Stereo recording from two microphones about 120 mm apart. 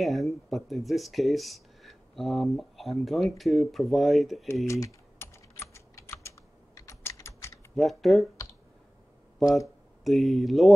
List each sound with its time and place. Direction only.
0.0 s speech: centre (ahead or behind)
4.6 s typing: 25° left (ahead or behind)
7.7 s speech: centre (ahead or behind)
9.4 s speech: centre (ahead or behind)